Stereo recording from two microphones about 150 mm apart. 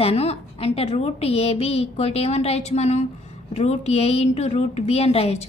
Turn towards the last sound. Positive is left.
turn(degrees=40)  # may be behind; listen again after turning